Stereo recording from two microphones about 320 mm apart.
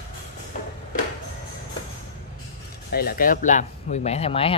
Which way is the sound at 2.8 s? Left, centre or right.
Left.